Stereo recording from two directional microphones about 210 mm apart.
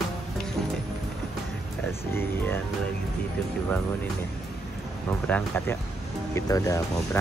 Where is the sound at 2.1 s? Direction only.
10° left (ahead or behind).